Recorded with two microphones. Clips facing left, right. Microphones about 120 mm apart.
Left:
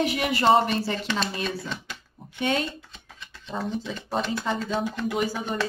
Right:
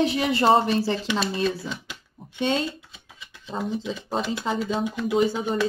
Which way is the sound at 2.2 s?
25° right (ahead or behind).